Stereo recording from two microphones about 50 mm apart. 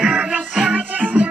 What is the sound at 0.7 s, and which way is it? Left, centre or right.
Music, right.